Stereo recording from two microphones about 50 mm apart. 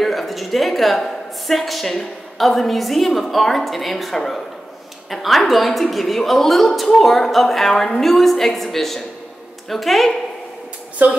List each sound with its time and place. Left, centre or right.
0.0 s a woman's voice: centre
11.0 s speech: right